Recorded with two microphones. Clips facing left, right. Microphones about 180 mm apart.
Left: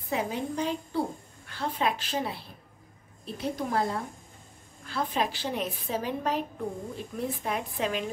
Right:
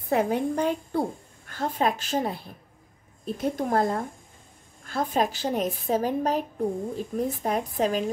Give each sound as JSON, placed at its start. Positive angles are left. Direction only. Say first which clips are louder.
{"t": 0.0, "sound": "a woman's voice", "louder": "right 7 dB", "side_deg": -55}